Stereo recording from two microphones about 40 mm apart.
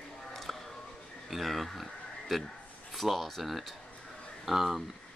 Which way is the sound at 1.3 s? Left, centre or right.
Centre.